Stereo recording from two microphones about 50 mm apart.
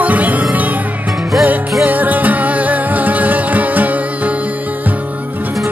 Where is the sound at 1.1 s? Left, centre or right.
Centre.